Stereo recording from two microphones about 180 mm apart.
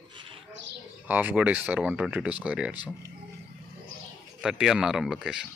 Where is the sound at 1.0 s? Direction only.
10° right (ahead or behind).